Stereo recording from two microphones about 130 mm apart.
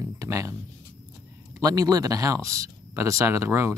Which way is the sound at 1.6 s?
30° right (ahead or behind).